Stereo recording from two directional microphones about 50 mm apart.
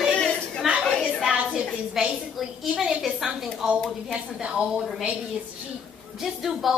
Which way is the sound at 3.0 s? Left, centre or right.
Centre.